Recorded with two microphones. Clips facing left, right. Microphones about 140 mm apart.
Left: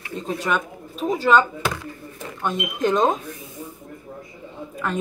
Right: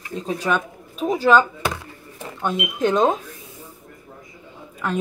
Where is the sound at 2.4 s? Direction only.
Centre (ahead or behind).